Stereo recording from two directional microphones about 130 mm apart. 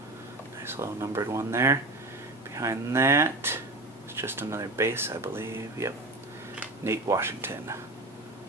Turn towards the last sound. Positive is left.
turn(degrees=-20)  # may be behind; listen again after turning